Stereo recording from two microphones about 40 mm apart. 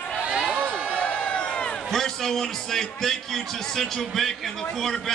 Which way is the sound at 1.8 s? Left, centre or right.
Centre.